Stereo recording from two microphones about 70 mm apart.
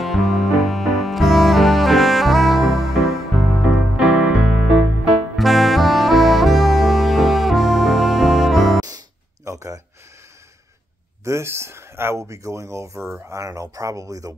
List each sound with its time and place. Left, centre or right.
0.0 s music: centre
8.8 s a sound: right
11.2 s speech: right